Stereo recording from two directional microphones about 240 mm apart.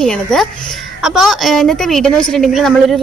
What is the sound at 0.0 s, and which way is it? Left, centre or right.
Speech, centre.